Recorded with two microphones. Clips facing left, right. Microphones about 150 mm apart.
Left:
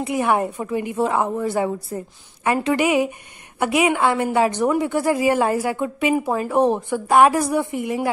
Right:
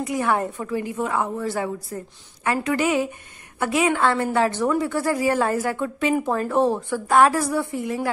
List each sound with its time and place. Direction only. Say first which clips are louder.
0.0 s a woman's voice: left 3 dB; 20° left (ahead or behind)